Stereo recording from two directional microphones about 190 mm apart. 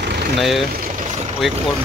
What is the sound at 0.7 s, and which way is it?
Vehicle, 40° right (ahead or behind).